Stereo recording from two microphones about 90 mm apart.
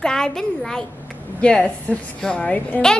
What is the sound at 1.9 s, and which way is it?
Speech, 10° left (ahead or behind).